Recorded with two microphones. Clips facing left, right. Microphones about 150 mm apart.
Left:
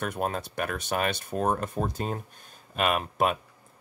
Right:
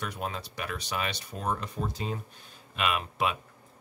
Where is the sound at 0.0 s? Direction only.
50° left (ahead or behind).